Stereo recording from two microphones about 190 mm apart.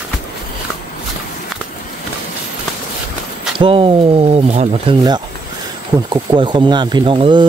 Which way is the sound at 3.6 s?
30° right (ahead or behind).